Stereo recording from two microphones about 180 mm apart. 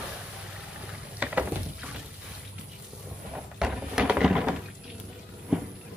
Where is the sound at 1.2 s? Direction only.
5° right (ahead or behind).